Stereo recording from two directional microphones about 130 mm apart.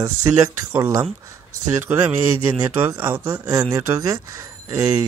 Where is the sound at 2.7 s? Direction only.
15° right (ahead or behind).